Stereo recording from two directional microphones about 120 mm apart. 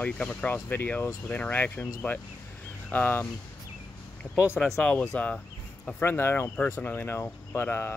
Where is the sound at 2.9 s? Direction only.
15° left (ahead or behind).